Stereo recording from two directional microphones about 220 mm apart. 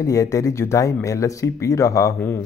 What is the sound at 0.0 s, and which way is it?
Speech, 15° left (ahead or behind).